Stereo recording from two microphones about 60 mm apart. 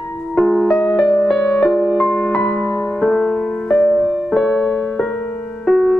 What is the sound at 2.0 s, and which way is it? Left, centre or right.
Music, centre.